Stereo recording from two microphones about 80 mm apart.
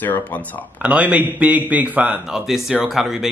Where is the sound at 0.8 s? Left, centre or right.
Centre.